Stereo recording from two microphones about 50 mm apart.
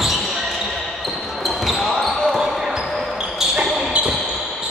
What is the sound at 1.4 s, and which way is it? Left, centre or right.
Basketball bounce, centre.